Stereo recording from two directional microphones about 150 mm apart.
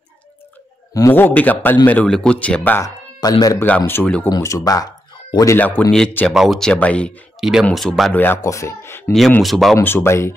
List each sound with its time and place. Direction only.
0.9 s speech: 15° left (ahead or behind)
3.2 s speech: 25° left (ahead or behind)
3.6 s speech: 10° left (ahead or behind)
5.6 s speech: 10° left (ahead or behind)
7.3 s speech: centre (ahead or behind)
8.1 s speech: 10° left (ahead or behind)
9.4 s speech: centre (ahead or behind)
9.8 s speech: 15° left (ahead or behind)